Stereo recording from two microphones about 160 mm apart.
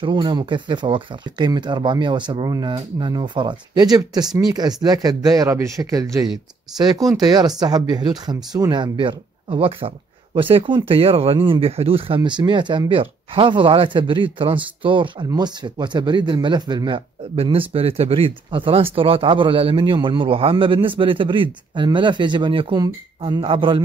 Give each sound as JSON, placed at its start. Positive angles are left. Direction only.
{"t": 0.0, "sound": "speech", "side_deg": -30}
{"t": 6.2, "sound": "speech", "side_deg": 0}
{"t": 7.2, "sound": "speech", "side_deg": -25}